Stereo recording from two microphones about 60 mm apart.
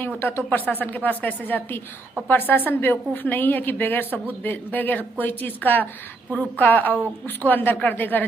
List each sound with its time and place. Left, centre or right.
0.5 s a woman's voice: left